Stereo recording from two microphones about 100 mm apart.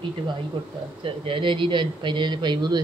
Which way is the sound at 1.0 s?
60° right (ahead or behind).